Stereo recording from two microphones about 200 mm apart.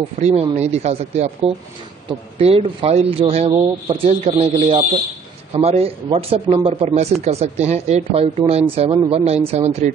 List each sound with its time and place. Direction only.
0.2 s a man's voice: 30° right (ahead or behind)